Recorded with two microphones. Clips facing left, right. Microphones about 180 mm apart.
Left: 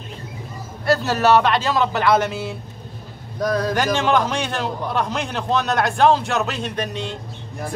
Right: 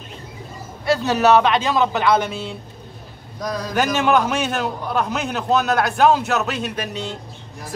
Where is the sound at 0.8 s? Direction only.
Centre (ahead or behind).